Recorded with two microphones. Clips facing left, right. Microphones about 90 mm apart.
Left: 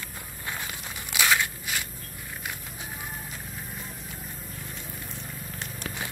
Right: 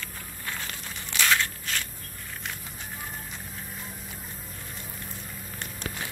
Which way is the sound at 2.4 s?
5° left (ahead or behind).